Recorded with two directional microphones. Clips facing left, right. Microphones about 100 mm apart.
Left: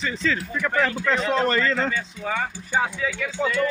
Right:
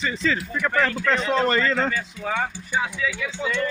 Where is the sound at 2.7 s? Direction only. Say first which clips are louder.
Left 5 dB; 45° left (ahead or behind).